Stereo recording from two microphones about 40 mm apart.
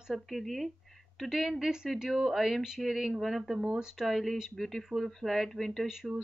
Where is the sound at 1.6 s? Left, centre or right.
Centre.